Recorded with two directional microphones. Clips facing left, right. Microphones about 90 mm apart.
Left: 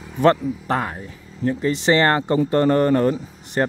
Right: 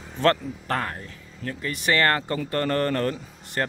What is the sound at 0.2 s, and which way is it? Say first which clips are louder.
Speech: left 5 dB; 15° left (ahead or behind).